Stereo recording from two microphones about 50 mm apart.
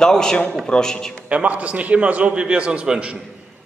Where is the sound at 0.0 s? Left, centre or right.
Centre.